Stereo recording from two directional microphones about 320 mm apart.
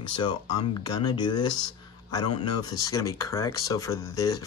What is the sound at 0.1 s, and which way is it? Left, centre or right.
A man's voice, centre.